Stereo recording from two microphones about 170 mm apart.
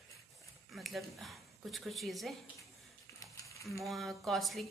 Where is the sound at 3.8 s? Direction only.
Centre (ahead or behind).